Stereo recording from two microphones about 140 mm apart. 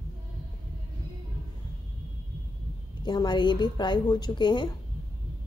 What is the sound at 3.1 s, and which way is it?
A woman's voice, 30° left (ahead or behind).